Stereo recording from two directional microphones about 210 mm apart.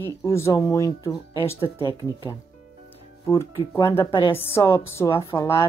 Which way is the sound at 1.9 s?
15° right (ahead or behind).